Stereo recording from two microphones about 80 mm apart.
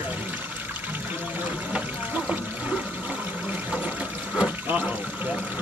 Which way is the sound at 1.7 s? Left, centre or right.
Centre.